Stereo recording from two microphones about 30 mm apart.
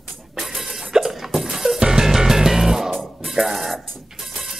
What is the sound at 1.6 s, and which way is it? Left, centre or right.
Music, centre.